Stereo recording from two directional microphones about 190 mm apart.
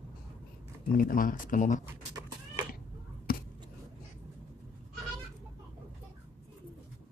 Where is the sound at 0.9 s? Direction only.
45° left (ahead or behind).